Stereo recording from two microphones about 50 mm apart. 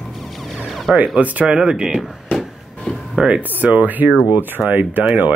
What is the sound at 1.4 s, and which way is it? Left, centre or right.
Speech, centre.